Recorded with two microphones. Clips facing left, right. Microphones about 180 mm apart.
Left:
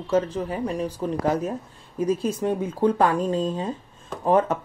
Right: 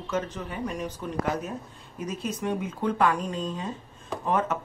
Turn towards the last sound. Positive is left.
turn(degrees=30)  # may be behind; listen again after turning